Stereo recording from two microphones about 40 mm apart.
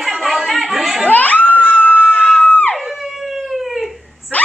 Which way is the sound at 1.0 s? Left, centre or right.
Left.